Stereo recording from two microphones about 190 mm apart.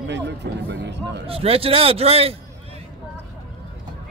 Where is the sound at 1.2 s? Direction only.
30° right (ahead or behind).